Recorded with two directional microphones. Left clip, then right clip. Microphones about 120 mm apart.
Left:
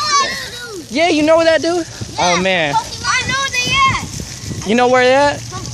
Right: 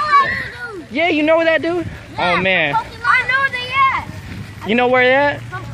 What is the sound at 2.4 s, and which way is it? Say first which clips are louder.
Speech: left 1 dB; 30° left (ahead or behind).